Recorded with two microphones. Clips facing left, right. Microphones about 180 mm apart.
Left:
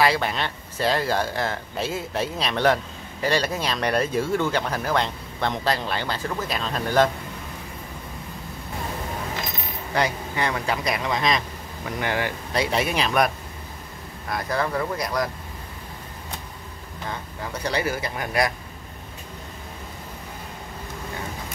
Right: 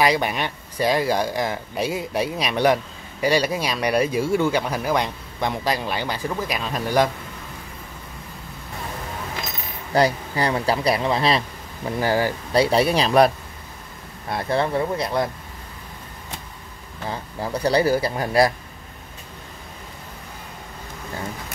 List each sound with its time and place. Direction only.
0.0 s speech: 15° right (ahead or behind)
9.9 s speech: 35° right (ahead or behind)
14.3 s speech: 30° right (ahead or behind)
17.1 s speech: 35° right (ahead or behind)